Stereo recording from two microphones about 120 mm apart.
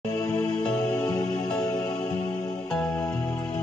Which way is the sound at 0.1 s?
20° left (ahead or behind).